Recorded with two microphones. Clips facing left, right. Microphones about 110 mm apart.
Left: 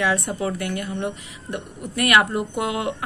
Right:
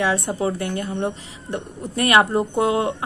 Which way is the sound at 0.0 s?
25° right (ahead or behind).